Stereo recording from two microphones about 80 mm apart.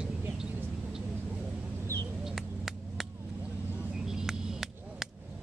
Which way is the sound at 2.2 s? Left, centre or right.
Centre.